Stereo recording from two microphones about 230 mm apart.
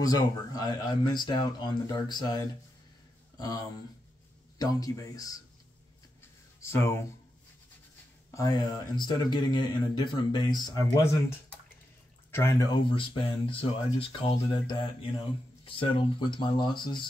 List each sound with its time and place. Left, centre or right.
0.0 s speech: centre
6.7 s speech: centre
8.3 s speech: centre